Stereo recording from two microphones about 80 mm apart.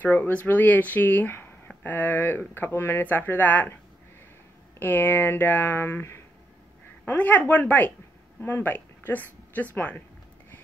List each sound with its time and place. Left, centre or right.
0.0 s speech: left
4.7 s speech: left
7.1 s a woman's voice: left